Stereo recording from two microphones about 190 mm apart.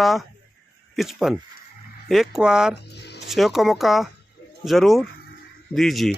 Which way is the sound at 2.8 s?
60° left (ahead or behind).